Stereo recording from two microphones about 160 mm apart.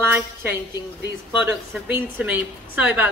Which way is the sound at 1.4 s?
10° right (ahead or behind).